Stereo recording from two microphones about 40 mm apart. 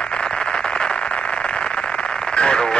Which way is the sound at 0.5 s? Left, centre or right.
Left.